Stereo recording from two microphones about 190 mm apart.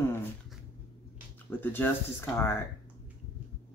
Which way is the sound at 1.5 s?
10° left (ahead or behind).